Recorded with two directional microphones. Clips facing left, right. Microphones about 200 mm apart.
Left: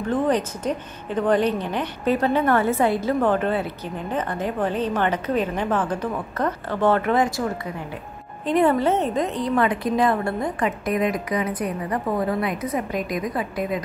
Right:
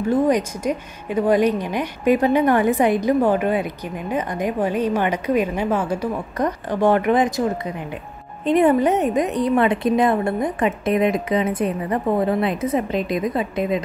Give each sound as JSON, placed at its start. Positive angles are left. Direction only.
{"t": 0.0, "sound": "a woman's voice", "side_deg": -10}